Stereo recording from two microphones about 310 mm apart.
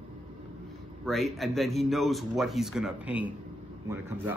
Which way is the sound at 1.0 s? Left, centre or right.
Centre.